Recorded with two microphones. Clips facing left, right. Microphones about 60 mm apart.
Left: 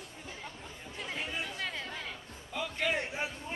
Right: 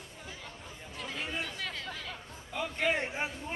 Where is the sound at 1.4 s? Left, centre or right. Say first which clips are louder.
Even; centre.